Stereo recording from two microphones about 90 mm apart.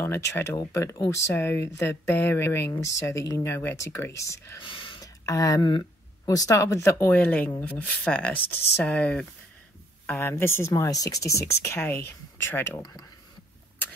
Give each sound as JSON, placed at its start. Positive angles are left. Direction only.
{"t": 0.0, "sound": "speech", "side_deg": 25}
{"t": 4.6, "sound": "whispering", "side_deg": 70}
{"t": 5.0, "sound": "a sound", "side_deg": 40}
{"t": 6.2, "sound": "a woman's voice", "side_deg": 40}
{"t": 10.7, "sound": "speech", "side_deg": 40}